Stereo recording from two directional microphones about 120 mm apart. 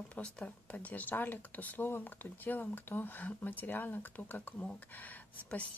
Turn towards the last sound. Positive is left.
turn(degrees=15)  # may be behind; listen again after turning